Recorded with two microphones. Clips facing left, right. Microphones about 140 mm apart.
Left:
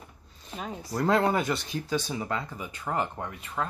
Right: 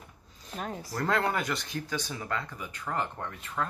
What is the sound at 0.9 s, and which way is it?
Speech, 20° left (ahead or behind).